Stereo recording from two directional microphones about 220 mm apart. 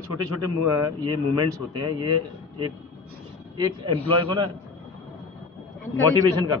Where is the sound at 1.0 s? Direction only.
20° right (ahead or behind).